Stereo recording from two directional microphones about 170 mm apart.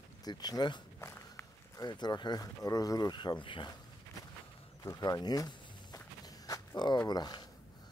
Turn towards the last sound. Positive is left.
turn(degrees=25)  # may be behind; listen again after turning